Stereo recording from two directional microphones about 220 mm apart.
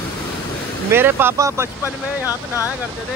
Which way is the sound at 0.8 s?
10° right (ahead or behind).